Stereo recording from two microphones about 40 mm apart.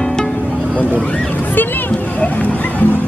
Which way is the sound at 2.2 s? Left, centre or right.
Left.